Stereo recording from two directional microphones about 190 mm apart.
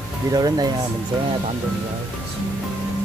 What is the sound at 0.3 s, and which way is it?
Speech, 20° right (ahead or behind).